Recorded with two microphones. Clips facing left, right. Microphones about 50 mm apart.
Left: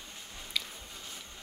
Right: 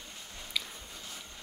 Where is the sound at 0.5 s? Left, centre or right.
Centre.